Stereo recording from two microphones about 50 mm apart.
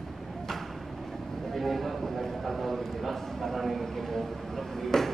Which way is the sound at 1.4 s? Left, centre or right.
Centre.